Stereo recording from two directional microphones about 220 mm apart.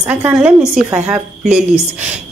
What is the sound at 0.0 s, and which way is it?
A woman's voice, 10° right (ahead or behind).